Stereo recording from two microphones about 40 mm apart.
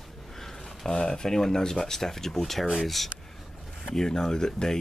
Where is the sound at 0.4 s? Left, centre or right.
Centre.